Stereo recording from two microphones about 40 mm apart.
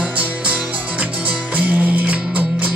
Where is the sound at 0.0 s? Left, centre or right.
Right.